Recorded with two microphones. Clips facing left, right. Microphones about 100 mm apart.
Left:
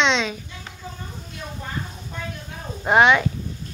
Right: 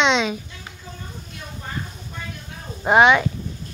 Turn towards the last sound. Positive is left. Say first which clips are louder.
# right 1 dB
turn(degrees=-5)  # may be behind; listen again after turning